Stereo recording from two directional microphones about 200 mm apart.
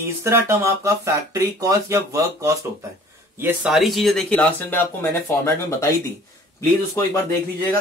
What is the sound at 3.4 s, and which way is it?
Speech, 5° right (ahead or behind).